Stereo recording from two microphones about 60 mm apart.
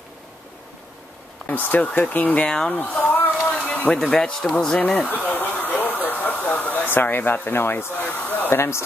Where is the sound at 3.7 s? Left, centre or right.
Left.